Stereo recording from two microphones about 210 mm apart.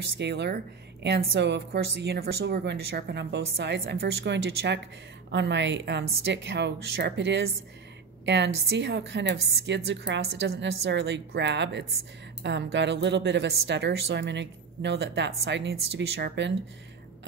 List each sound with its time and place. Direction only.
0.2 s a woman's voice: 55° right (ahead or behind)